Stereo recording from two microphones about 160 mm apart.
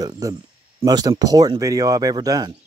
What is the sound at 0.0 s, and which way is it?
Speech, 20° right (ahead or behind).